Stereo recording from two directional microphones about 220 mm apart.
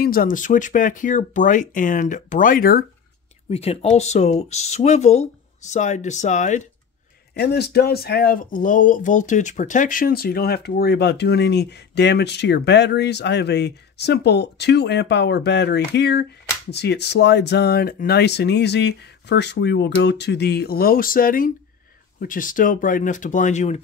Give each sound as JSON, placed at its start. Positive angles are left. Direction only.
{"t": 0.0, "sound": "speech", "side_deg": 40}
{"t": 3.4, "sound": "speech", "side_deg": 30}
{"t": 7.3, "sound": "speech", "side_deg": 45}